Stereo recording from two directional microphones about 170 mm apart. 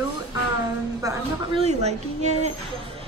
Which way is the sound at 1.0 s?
20° right (ahead or behind).